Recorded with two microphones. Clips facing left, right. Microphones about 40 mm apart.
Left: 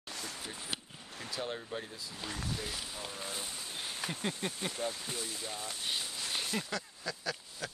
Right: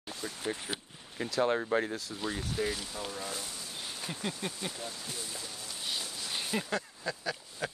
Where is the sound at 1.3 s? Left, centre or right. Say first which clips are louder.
Right 11 dB; right.